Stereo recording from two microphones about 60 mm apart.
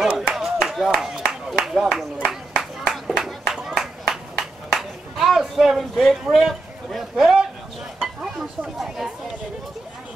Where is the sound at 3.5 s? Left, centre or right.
Centre.